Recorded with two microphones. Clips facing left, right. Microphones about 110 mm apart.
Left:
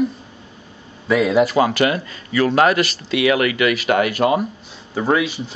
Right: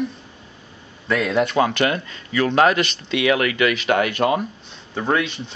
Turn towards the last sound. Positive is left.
turn(degrees=5)  # may be behind; listen again after turning